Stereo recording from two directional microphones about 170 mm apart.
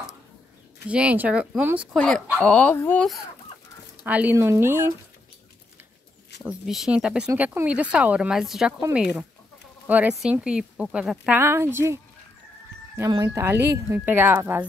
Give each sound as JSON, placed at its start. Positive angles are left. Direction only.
{"t": 0.8, "sound": "speech", "side_deg": -5}
{"t": 2.0, "sound": "speech", "side_deg": 5}
{"t": 4.0, "sound": "speech", "side_deg": -10}
{"t": 6.6, "sound": "speech", "side_deg": 0}